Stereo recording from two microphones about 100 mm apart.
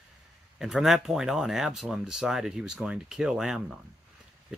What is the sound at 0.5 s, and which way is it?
Speech, 5° right (ahead or behind).